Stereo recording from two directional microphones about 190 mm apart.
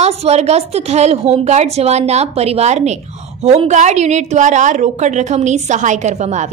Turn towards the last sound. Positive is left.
turn(degrees=-35)  # may be behind; listen again after turning